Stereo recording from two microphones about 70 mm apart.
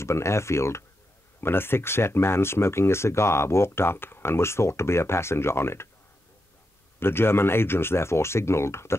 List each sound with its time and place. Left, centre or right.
0.0 s speech: left
7.0 s speech: left